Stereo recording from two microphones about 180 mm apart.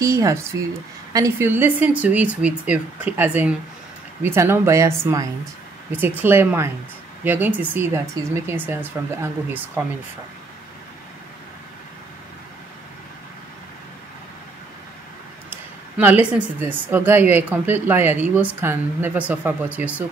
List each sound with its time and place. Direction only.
0.0 s speech: 15° right (ahead or behind)
15.5 s speech: 10° right (ahead or behind)